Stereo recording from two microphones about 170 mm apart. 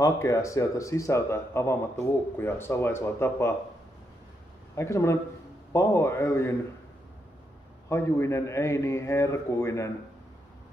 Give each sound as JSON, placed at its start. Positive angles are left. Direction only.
{"t": 0.0, "sound": "a man's voice", "side_deg": 20}
{"t": 4.7, "sound": "a man's voice", "side_deg": 15}
{"t": 7.9, "sound": "a man's voice", "side_deg": 15}